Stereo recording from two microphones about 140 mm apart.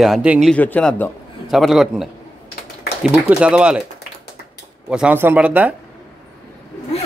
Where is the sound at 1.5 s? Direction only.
Centre (ahead or behind).